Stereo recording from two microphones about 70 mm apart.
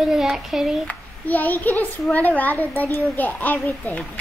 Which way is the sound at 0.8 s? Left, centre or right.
Left.